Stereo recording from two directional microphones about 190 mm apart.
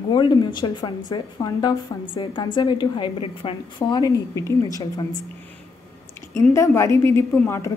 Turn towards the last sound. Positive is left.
turn(degrees=15)  # may be behind; listen again after turning